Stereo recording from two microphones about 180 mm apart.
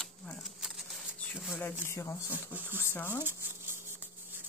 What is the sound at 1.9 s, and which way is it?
Speech, 15° left (ahead or behind).